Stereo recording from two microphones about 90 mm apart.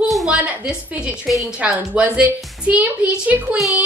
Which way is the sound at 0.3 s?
15° right (ahead or behind).